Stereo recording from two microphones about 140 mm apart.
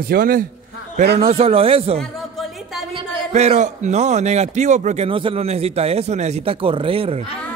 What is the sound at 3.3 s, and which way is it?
A man's voice, 55° right (ahead or behind).